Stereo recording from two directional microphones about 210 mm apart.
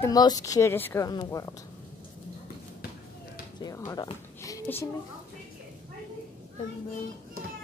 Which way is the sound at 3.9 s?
15° left (ahead or behind).